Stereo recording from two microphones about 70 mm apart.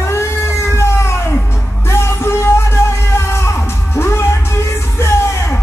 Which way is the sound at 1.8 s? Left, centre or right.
Left.